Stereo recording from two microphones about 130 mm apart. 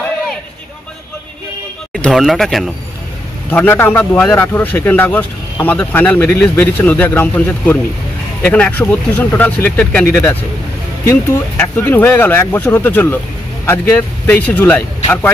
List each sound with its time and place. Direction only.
2.0 s speech: centre (ahead or behind)
3.4 s speech: 15° left (ahead or behind)